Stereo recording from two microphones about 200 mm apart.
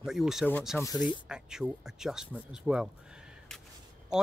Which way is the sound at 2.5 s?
5° right (ahead or behind).